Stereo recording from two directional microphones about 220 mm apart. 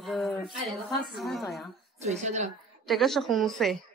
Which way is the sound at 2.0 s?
30° right (ahead or behind).